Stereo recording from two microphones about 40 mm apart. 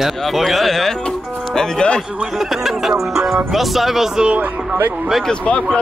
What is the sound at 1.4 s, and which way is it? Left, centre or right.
Speech, centre.